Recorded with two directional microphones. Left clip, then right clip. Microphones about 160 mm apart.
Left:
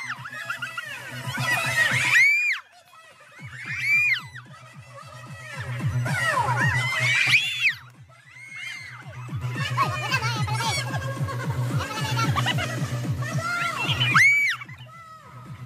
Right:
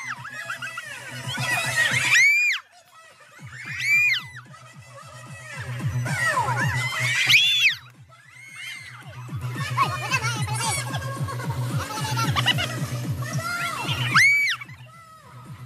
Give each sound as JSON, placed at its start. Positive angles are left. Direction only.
{"t": 0.0, "sound": "music", "side_deg": -45}
{"t": 3.5, "sound": "music", "side_deg": -40}
{"t": 3.8, "sound": "music", "side_deg": 0}
{"t": 4.9, "sound": "music", "side_deg": -40}
{"t": 7.2, "sound": "music", "side_deg": 0}
{"t": 9.3, "sound": "music", "side_deg": -35}
{"t": 12.3, "sound": "music", "side_deg": 0}
{"t": 12.7, "sound": "music", "side_deg": -40}
{"t": 14.1, "sound": "music", "side_deg": 0}